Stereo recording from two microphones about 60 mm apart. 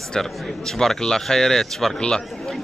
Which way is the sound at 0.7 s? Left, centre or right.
Centre.